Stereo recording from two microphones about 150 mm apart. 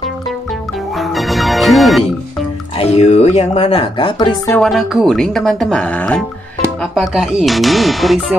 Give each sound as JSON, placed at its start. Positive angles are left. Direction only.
{"t": 0.9, "sound": "music", "side_deg": 0}
{"t": 2.8, "sound": "speech", "side_deg": 45}
{"t": 4.6, "sound": "speech", "side_deg": 0}